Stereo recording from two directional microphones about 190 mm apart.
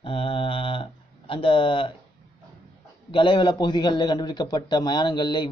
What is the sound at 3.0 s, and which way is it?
Speech, 25° left (ahead or behind).